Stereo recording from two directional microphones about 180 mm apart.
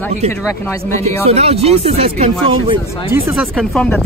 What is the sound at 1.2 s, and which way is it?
Speech, 35° right (ahead or behind).